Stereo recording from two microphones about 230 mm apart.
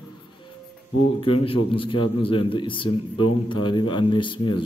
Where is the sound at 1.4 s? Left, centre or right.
Left.